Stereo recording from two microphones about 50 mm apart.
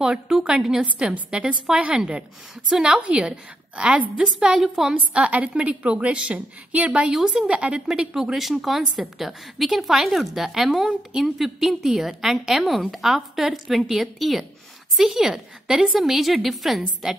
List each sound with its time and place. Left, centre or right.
0.0 s a woman's voice: centre
4.9 s a woman's voice: right; by 17.1 s centre